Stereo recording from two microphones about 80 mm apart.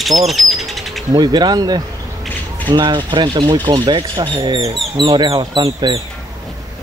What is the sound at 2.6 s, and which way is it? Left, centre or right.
Speech, right.